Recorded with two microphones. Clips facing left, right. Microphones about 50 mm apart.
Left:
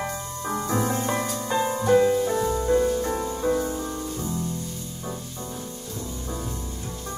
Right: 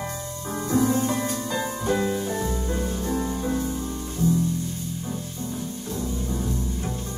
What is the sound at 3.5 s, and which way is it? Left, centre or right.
Music, left.